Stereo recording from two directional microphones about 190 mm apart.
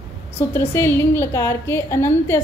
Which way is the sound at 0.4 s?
10° left (ahead or behind).